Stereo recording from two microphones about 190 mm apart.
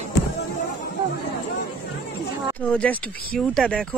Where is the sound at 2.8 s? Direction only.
5° left (ahead or behind).